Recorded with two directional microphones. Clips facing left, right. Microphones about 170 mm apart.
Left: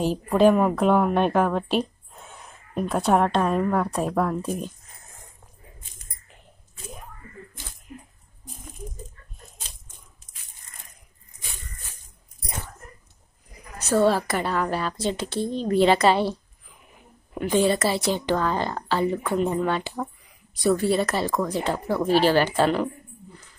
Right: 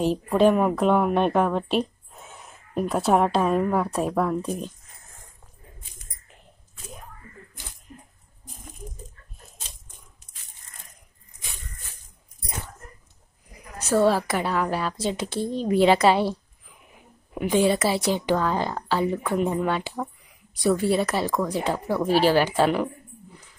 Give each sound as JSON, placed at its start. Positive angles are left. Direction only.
{"t": 0.0, "sound": "a woman's voice", "side_deg": 0}
{"t": 5.0, "sound": "dog", "side_deg": 20}
{"t": 13.8, "sound": "a woman's voice", "side_deg": -5}